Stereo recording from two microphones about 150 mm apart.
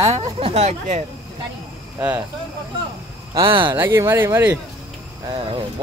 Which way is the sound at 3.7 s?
15° right (ahead or behind).